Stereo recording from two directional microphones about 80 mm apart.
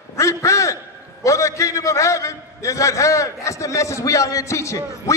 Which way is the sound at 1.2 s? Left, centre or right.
Left.